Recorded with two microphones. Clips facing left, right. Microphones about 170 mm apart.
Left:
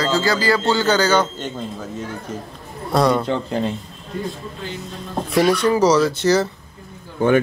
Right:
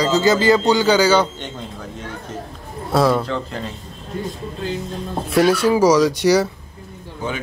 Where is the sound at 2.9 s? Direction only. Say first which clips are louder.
Even; 5° right (ahead or behind).